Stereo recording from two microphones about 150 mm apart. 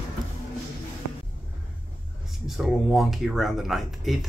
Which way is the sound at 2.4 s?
Centre (ahead or behind).